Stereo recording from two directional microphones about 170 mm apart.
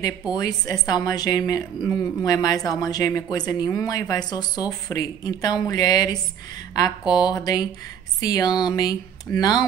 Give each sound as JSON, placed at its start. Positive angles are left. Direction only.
{"t": 0.3, "sound": "speech", "side_deg": 20}